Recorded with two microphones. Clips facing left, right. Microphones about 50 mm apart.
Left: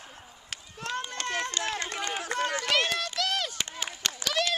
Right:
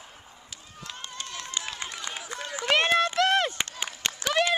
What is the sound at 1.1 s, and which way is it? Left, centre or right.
Run, left.